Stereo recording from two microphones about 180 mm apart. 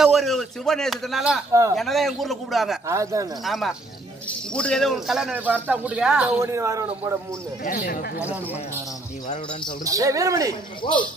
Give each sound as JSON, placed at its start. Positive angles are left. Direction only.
{"t": 0.0, "sound": "speech", "side_deg": 0}
{"t": 1.5, "sound": "speech", "side_deg": -15}
{"t": 1.8, "sound": "speech", "side_deg": 0}
{"t": 2.9, "sound": "speech", "side_deg": -15}
{"t": 3.4, "sound": "speech", "side_deg": 0}
{"t": 6.4, "sound": "speech", "side_deg": -15}
{"t": 7.6, "sound": "speech", "side_deg": 45}
{"t": 9.8, "sound": "speech", "side_deg": -20}
{"t": 10.8, "sound": "speech", "side_deg": 25}